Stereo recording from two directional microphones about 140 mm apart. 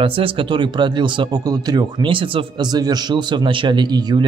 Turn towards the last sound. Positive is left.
turn(degrees=-30)  # may be behind; listen again after turning